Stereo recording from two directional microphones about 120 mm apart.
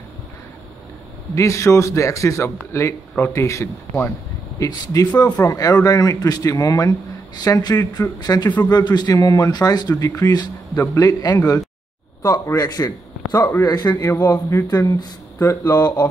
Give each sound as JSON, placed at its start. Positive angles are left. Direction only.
{"t": 1.3, "sound": "a man's voice", "side_deg": 25}
{"t": 4.6, "sound": "a man's voice", "side_deg": 35}
{"t": 14.0, "sound": "a man's voice", "side_deg": 20}